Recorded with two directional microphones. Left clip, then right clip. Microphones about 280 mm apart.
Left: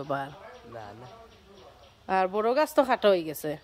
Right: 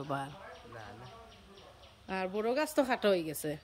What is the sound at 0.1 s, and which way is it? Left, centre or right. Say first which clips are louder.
Speech: left 6 dB; centre.